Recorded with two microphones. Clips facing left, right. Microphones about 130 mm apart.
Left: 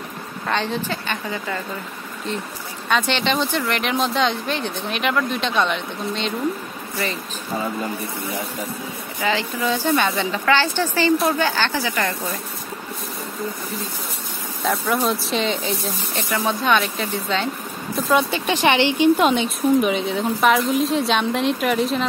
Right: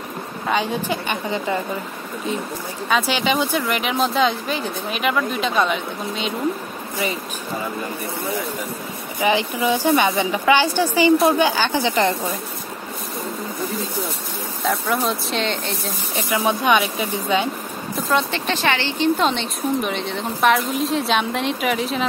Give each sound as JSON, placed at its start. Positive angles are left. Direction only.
{"t": 0.5, "sound": "speech", "side_deg": -10}
{"t": 2.9, "sound": "speech", "side_deg": -5}
{"t": 9.2, "sound": "speech", "side_deg": -15}
{"t": 14.6, "sound": "speech", "side_deg": 0}
{"t": 16.3, "sound": "speech", "side_deg": -15}
{"t": 17.9, "sound": "speech", "side_deg": 5}